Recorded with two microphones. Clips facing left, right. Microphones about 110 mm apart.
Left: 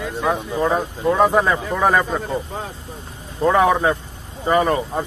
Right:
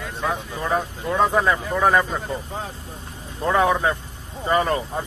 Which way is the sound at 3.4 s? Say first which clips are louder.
Left 4 dB; 20° left (ahead or behind).